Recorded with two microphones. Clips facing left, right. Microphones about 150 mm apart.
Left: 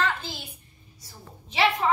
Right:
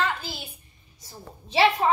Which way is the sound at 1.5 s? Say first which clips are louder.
Right 3 dB; 30° right (ahead or behind).